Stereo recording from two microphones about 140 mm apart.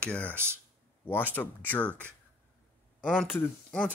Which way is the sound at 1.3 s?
10° left (ahead or behind).